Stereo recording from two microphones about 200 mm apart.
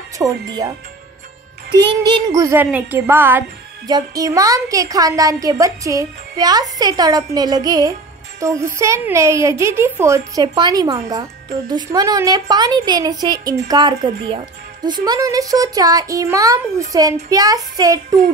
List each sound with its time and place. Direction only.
0.2 s a woman's voice: 20° right (ahead or behind)
1.7 s a woman's voice: 20° right (ahead or behind)